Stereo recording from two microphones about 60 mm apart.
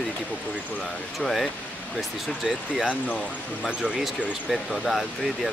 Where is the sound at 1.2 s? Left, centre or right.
Centre.